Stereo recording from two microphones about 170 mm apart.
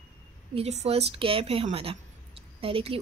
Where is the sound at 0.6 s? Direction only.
40° right (ahead or behind).